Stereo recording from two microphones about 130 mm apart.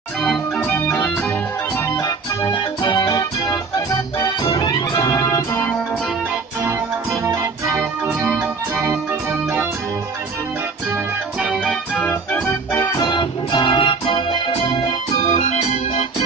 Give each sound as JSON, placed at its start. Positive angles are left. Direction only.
{"t": 0.6, "sound": "organ", "side_deg": 15}
{"t": 2.0, "sound": "organ", "side_deg": 30}
{"t": 6.6, "sound": "organ", "side_deg": -25}
{"t": 11.4, "sound": "organ", "side_deg": -5}
{"t": 11.9, "sound": "organ", "side_deg": 15}
{"t": 13.0, "sound": "keyboard", "side_deg": 35}
{"t": 15.2, "sound": "organ", "side_deg": 65}